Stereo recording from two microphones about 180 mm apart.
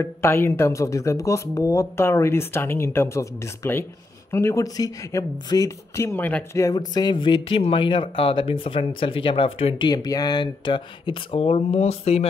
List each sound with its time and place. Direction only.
0.0 s speech: 15° left (ahead or behind); by 12.3 s 35° left (ahead or behind)